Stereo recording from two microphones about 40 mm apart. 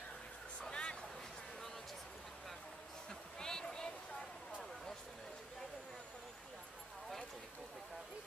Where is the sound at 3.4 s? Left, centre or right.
Centre.